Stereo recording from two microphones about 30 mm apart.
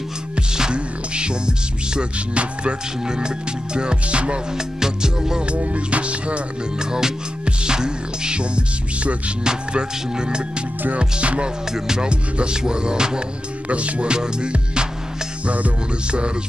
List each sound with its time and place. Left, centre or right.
0.4 s music: right
3.1 s music: right
4.6 s music: centre
5.6 s music: right
6.8 s music: right
11.0 s music: right
11.7 s music: centre
12.1 s music: right
13.7 s music: right
14.1 s music: right
15.4 s music: right